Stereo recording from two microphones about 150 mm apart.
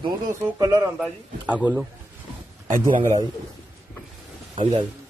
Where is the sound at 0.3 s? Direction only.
25° right (ahead or behind).